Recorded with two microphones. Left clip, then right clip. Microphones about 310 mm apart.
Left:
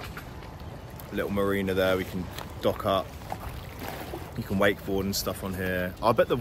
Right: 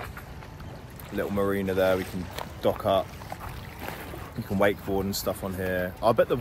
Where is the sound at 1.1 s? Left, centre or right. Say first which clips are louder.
Even; centre.